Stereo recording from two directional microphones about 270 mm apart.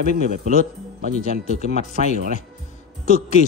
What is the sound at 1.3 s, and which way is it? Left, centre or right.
Speech, left.